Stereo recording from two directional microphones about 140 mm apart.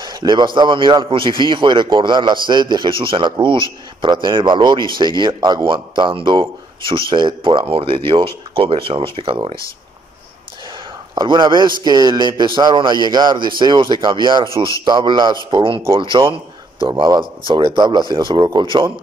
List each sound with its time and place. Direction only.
0.0 s a man's voice: 30° right (ahead or behind)
11.1 s a man's voice: 35° right (ahead or behind)